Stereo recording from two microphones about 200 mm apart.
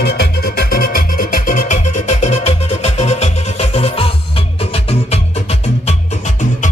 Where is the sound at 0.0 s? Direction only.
50° left (ahead or behind); by 5.9 s 30° left (ahead or behind).